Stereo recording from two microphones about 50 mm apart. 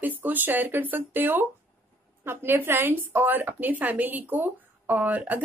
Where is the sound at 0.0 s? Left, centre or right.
Right.